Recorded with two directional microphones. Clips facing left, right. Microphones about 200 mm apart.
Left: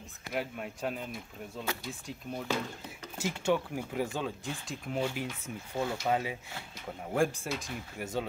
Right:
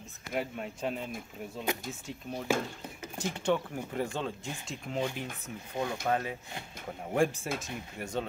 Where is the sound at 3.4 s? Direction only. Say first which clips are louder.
Even; 5° left (ahead or behind).